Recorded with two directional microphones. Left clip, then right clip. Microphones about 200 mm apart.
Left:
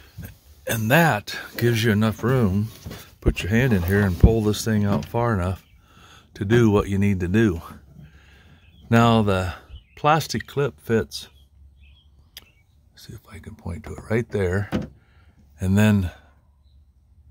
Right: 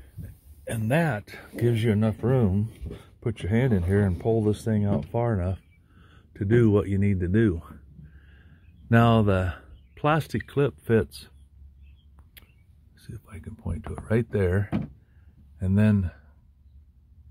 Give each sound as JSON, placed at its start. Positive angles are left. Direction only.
{"t": 0.7, "sound": "speech", "side_deg": 35}
{"t": 8.2, "sound": "speech", "side_deg": 10}
{"t": 13.0, "sound": "speech", "side_deg": 5}
{"t": 15.5, "sound": "speech", "side_deg": 35}